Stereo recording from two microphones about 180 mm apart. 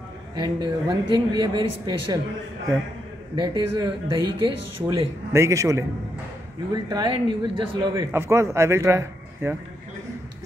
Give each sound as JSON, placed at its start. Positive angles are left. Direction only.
{"t": 0.4, "sound": "speech", "side_deg": -25}
{"t": 3.4, "sound": "speech", "side_deg": -20}
{"t": 7.9, "sound": "speech", "side_deg": -15}